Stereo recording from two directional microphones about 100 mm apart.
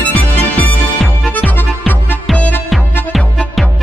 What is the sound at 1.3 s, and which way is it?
Music, 15° left (ahead or behind).